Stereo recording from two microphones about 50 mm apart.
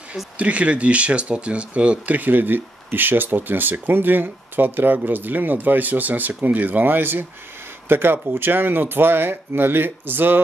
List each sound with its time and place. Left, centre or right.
0.4 s speech: right